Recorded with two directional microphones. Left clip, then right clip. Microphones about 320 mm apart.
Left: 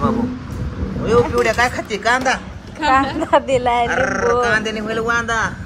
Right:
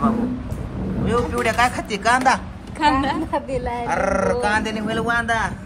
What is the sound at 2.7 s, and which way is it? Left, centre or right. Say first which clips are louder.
Speech: left 3 dB; right.